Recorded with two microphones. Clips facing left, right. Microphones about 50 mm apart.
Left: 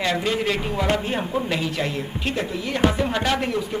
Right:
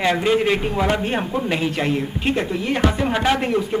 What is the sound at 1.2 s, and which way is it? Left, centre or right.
Speech, centre.